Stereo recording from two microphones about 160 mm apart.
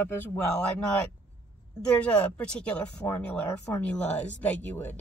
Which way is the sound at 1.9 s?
5° left (ahead or behind).